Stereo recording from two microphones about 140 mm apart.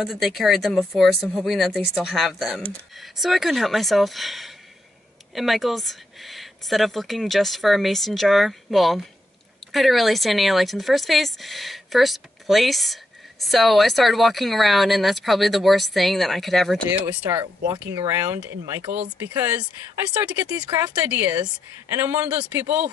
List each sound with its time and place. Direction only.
0.0 s speech: centre (ahead or behind)
17.0 s speech: 10° right (ahead or behind)